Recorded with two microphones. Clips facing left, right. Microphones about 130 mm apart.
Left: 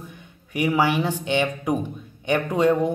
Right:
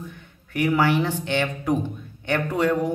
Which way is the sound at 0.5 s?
15° left (ahead or behind).